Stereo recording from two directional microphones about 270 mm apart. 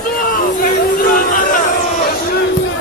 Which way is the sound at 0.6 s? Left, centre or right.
Left.